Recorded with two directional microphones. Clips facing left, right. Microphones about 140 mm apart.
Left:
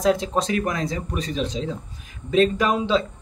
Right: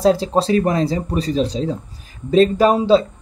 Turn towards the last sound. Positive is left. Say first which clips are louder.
# right 8 dB
turn(degrees=-35)  # may be behind; listen again after turning